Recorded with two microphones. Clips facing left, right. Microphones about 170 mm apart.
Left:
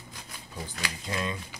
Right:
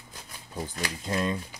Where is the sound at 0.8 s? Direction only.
40° right (ahead or behind).